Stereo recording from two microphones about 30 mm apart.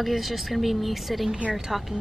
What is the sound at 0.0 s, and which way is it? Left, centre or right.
A woman's voice, centre.